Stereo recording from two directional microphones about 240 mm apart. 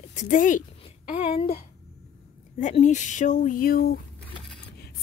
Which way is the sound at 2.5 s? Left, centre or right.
Left.